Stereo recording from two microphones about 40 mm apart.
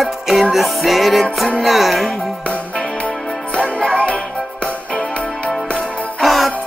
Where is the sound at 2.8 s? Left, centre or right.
Left.